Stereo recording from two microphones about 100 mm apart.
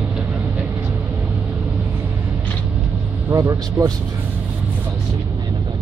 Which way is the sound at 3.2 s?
35° right (ahead or behind).